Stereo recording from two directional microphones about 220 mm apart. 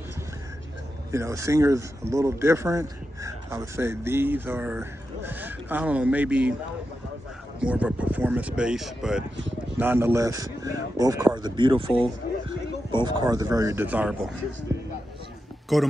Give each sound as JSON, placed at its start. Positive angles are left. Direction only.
{"t": 1.1, "sound": "speech", "side_deg": -15}
{"t": 7.6, "sound": "speech", "side_deg": -5}
{"t": 15.7, "sound": "speech", "side_deg": 0}